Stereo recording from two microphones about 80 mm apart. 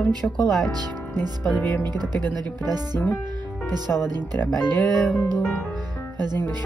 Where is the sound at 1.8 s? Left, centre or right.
Right.